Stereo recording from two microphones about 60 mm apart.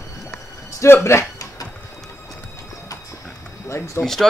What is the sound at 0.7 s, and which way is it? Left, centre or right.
Speech, left.